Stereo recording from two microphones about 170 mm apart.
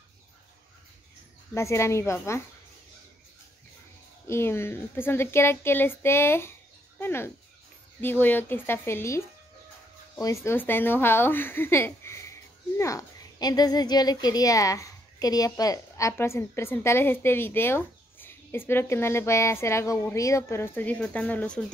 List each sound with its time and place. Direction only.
1.5 s speech: 15° left (ahead or behind)
4.3 s speech: 15° left (ahead or behind)